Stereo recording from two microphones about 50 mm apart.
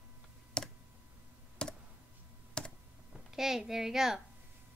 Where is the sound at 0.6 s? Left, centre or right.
Centre.